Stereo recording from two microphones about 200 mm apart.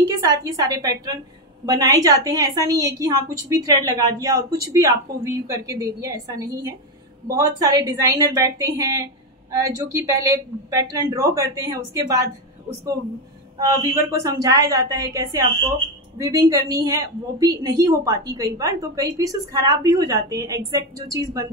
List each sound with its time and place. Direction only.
0.2 s a woman's voice: 15° right (ahead or behind)
13.6 s a woman's voice: 15° right (ahead or behind)